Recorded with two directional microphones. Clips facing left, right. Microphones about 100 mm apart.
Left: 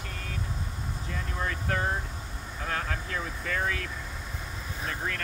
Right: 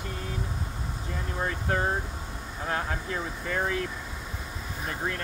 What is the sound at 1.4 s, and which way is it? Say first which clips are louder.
Speech: right 2 dB; 25° right (ahead or behind).